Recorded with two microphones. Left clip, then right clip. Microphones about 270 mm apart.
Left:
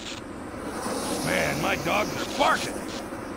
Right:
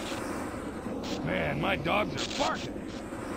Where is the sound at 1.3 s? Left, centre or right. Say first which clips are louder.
Left 5 dB; centre.